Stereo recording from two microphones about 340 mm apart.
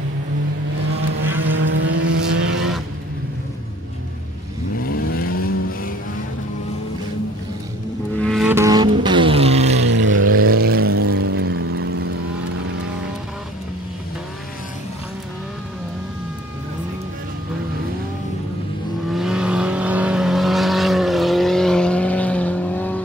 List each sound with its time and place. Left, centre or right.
1.6 s vehicle: right
2.5 s vehicle: centre
4.8 s vehicle: left
8.2 s vehicle: centre
9.8 s vehicle: right
19.1 s vehicle: centre